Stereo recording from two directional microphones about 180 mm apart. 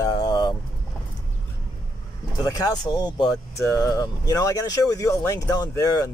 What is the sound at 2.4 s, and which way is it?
Speech, 20° left (ahead or behind).